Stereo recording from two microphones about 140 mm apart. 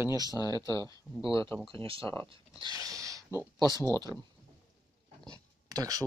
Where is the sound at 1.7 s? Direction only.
40° right (ahead or behind).